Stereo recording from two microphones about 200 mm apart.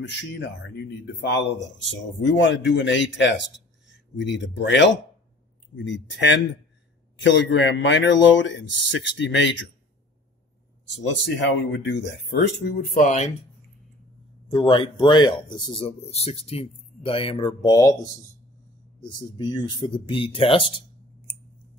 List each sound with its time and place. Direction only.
0.0 s speech: 60° left (ahead or behind)
11.1 s speech: 60° left (ahead or behind)
12.9 s speech: 35° left (ahead or behind)
14.5 s speech: 25° left (ahead or behind)
19.0 s speech: 20° left (ahead or behind)